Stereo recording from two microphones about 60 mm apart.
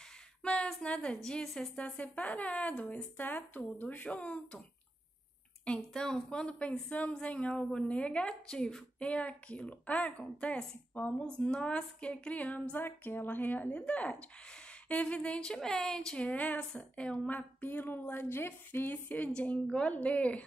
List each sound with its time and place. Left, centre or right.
0.4 s a sound: centre
0.8 s a woman's voice: centre
1.8 s speech: left
5.8 s speech: centre
12.7 s speech: left; by 16.3 s centre
16.3 s speech: left